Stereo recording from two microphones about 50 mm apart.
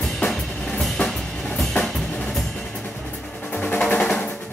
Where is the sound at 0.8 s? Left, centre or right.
Centre.